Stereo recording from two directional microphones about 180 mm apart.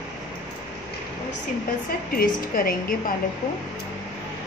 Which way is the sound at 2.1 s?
55° left (ahead or behind).